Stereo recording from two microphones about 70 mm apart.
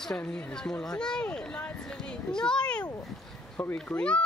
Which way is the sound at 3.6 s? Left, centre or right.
Left.